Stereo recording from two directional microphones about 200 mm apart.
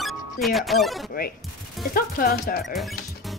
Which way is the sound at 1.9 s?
45° left (ahead or behind).